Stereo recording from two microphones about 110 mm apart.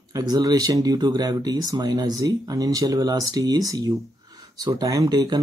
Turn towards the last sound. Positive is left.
turn(degrees=-35)  # may be behind; listen again after turning